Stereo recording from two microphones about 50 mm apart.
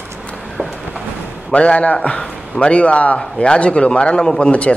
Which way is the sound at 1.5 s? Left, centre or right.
Left.